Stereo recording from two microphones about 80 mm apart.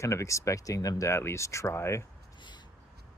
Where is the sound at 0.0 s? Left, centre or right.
Left.